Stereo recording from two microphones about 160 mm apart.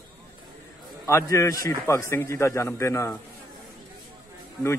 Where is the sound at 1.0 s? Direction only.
20° left (ahead or behind).